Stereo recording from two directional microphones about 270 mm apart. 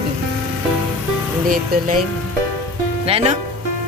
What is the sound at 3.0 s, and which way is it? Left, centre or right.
Speech, right.